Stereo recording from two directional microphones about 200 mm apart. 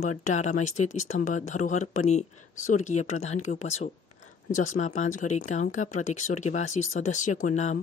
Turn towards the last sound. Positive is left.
turn(degrees=35)  # may be behind; listen again after turning